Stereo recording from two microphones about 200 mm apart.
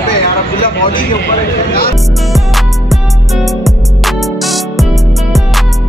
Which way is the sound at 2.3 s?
Centre (ahead or behind).